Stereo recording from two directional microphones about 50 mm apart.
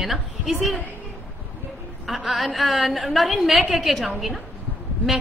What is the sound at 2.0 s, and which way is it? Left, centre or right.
A woman's voice, centre.